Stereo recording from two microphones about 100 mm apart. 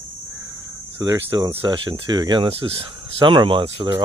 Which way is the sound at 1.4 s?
60° right (ahead or behind).